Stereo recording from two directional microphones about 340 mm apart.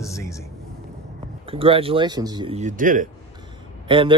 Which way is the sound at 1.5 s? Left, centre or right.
Centre.